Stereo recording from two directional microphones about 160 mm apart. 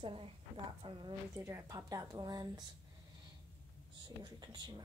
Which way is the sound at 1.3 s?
15° right (ahead or behind).